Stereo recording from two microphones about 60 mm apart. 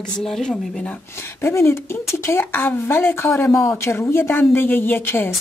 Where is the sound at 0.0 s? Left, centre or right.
Centre.